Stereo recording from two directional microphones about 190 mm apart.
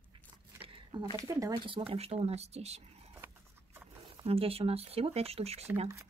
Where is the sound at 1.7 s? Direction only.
30° right (ahead or behind).